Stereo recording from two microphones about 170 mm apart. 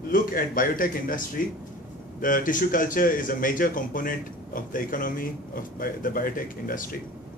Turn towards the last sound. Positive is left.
turn(degrees=55)  # may be behind; listen again after turning